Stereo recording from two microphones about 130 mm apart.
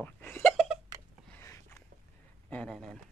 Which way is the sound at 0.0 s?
15° left (ahead or behind).